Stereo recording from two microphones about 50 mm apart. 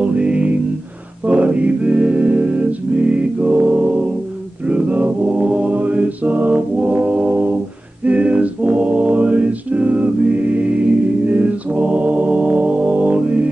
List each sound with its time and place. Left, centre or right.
0.0 s music: right
4.6 s a capella: right